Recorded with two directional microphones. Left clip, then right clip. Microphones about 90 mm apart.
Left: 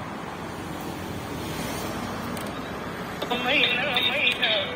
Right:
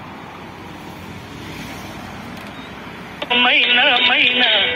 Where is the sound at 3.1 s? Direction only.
20° left (ahead or behind).